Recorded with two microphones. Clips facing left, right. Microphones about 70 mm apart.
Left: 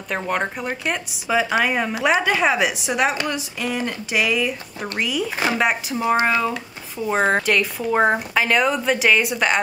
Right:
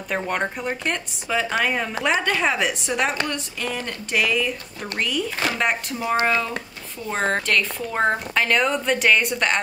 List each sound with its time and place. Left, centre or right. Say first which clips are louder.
0.1 s a woman's voice: left 1 dB; centre
5.9 s speech: left 5 dB; centre
6.2 s a woman's voice: left 2 dB; centre